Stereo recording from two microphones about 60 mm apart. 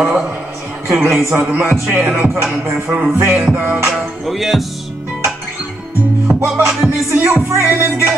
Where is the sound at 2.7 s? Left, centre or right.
Centre.